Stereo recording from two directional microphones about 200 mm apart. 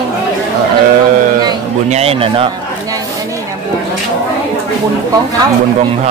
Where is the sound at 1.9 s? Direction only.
30° right (ahead or behind).